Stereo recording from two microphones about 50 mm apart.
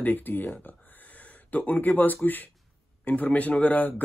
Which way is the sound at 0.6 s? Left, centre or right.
Left.